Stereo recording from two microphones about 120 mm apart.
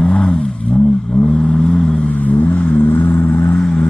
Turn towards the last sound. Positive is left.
turn(degrees=5)  # may be behind; listen again after turning